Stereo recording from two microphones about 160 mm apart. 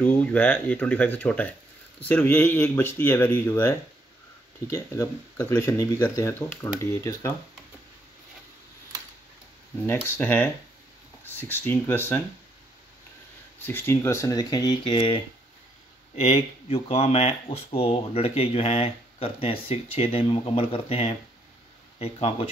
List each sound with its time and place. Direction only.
0.0 s speech: 10° left (ahead or behind)
9.8 s speech: 10° left (ahead or behind)
13.6 s speech: 15° left (ahead or behind); by 15.1 s 30° left (ahead or behind)
16.2 s speech: 35° left (ahead or behind)